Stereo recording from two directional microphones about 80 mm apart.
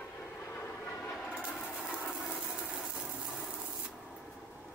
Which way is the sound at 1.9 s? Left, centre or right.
Centre.